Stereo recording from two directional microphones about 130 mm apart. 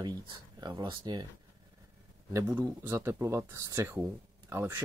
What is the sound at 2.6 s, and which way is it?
Speech, 25° right (ahead or behind).